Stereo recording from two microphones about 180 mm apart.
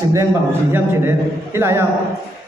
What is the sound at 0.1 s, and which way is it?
A man's voice, 15° right (ahead or behind).